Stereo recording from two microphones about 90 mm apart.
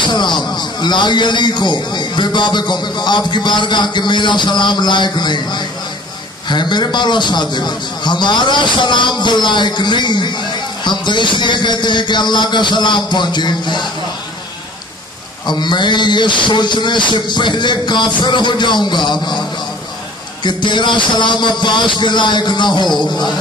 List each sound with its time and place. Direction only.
0.0 s a man's voice: 55° left (ahead or behind)
15.4 s a man's voice: 55° left (ahead or behind)
20.4 s a man's voice: 60° left (ahead or behind)